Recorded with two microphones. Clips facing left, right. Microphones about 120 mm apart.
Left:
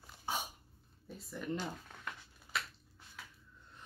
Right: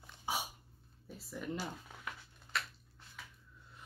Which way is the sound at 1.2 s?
Centre (ahead or behind).